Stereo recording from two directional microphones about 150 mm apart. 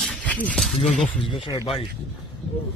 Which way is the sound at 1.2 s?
35° left (ahead or behind).